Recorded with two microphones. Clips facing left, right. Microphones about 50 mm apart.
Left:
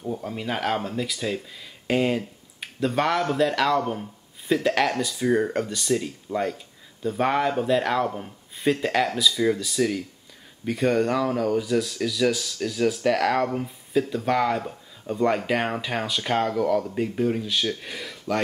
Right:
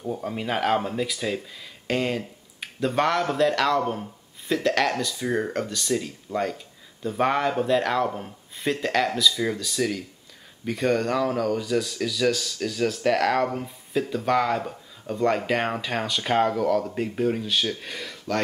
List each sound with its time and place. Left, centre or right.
0.0 s speech: centre